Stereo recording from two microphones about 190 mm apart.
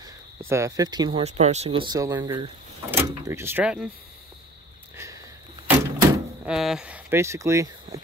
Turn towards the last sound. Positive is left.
turn(degrees=-15)  # may be behind; listen again after turning